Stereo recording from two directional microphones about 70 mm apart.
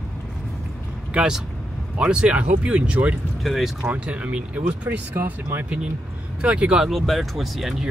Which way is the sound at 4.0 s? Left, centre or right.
Centre.